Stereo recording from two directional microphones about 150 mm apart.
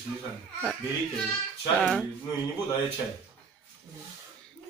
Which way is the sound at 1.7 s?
5° left (ahead or behind).